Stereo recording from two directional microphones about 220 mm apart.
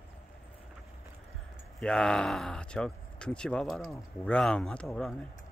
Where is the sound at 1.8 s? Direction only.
5° left (ahead or behind).